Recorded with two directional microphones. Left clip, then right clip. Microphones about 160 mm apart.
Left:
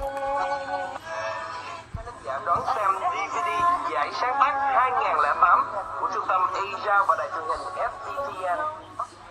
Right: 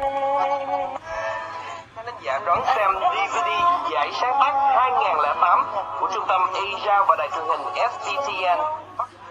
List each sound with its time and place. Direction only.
0.3 s music: 35° right (ahead or behind)
2.2 s a sound: 35° right (ahead or behind)
7.2 s speech: 40° right (ahead or behind)